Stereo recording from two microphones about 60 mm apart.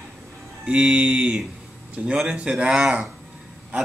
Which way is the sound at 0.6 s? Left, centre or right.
Centre.